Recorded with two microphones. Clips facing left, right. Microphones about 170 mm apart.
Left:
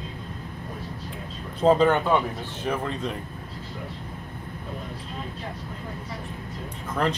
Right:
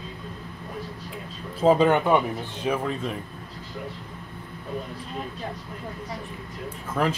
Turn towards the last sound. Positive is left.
turn(degrees=-5)  # may be behind; listen again after turning